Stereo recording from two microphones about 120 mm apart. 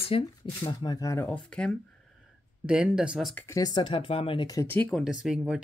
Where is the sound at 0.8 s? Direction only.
30° left (ahead or behind).